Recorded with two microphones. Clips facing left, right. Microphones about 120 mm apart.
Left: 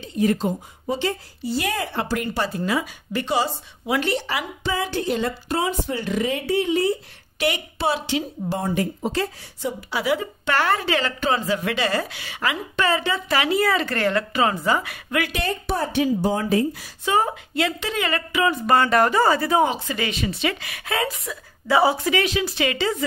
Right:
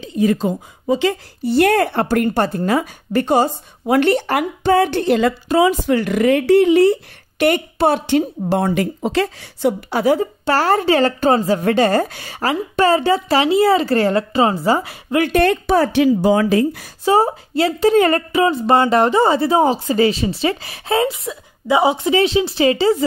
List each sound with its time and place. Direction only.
1.0 s speech: 65° right (ahead or behind)
9.9 s a woman's voice: 40° right (ahead or behind)
15.3 s speech: 70° right (ahead or behind)
17.0 s a woman's voice: 35° right (ahead or behind)